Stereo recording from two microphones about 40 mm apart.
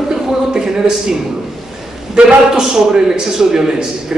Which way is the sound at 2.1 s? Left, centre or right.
Right.